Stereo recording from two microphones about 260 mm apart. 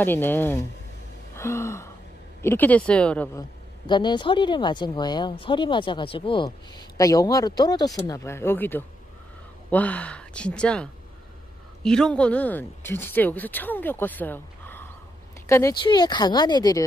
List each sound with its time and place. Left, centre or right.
0.0 s speech: centre
1.3 s gasp: centre
2.4 s speech: centre
3.8 s speech: centre